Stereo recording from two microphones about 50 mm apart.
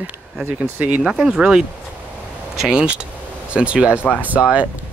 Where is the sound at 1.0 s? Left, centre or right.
Centre.